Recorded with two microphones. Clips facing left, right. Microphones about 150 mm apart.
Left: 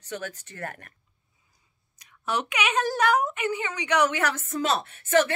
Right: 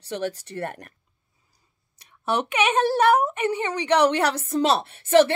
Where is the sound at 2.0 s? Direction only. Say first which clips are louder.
Right 4 dB; 25° right (ahead or behind).